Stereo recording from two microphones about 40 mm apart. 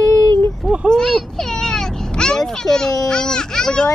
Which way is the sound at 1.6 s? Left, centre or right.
Centre.